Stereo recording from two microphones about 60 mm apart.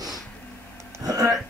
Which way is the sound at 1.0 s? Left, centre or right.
Right.